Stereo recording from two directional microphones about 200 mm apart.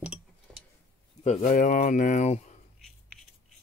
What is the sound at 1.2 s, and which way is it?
Speech, 35° left (ahead or behind).